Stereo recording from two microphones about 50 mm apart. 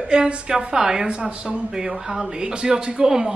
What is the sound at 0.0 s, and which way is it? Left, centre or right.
Speech, centre.